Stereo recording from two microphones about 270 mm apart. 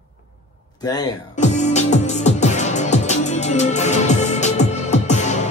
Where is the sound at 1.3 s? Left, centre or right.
Left.